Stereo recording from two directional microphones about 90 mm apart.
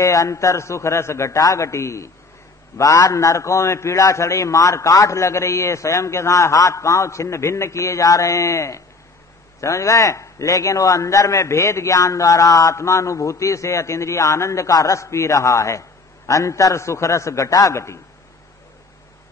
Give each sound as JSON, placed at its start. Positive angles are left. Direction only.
{"t": 0.0, "sound": "a man's voice", "side_deg": 40}